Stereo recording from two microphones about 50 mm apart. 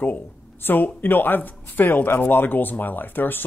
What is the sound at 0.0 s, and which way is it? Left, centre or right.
Speech, left.